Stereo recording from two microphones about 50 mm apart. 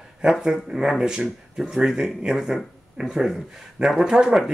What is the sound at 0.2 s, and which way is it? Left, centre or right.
Speech, centre.